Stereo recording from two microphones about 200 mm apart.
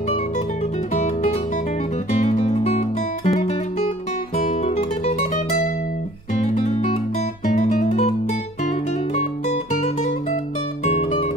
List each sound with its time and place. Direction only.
0.9 s music: 35° left (ahead or behind)
7.4 s guitar: 35° left (ahead or behind)
10.9 s music: 30° left (ahead or behind)